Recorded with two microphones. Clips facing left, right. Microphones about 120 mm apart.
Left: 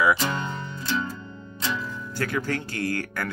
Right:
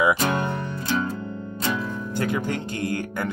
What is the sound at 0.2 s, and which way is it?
Music, 55° right (ahead or behind).